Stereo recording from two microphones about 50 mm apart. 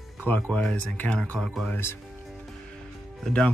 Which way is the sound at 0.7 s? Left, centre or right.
Left.